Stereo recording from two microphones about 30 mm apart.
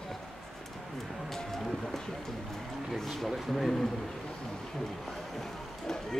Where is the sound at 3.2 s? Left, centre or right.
Centre.